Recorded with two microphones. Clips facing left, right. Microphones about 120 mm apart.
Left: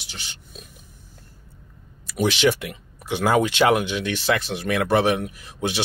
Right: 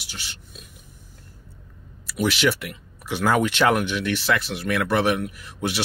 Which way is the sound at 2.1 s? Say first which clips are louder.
Left 2 dB; 25° left (ahead or behind).